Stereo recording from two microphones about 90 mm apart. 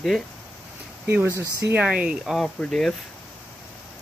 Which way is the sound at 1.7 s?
15° right (ahead or behind).